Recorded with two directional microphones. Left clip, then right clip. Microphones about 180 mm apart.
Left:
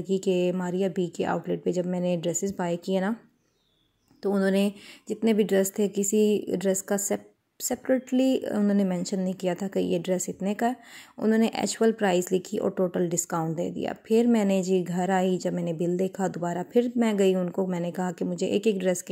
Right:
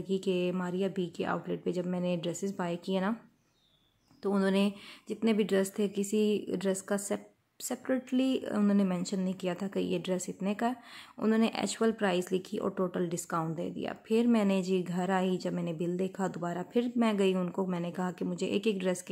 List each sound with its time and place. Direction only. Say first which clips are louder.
0.0 s a woman's voice: left 6 dB; 20° left (ahead or behind)
4.2 s a woman's voice: left 5 dB; 15° left (ahead or behind)